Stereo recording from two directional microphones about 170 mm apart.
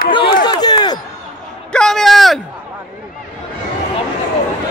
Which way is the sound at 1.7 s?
5° left (ahead or behind).